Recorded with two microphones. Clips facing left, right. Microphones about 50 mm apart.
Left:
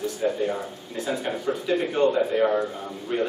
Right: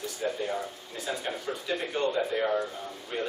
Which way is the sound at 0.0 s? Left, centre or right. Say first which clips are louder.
Left 7 dB; centre.